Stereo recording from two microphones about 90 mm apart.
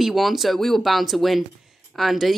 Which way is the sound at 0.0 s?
Centre (ahead or behind).